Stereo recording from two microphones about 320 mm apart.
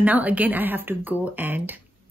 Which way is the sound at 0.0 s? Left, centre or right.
Centre.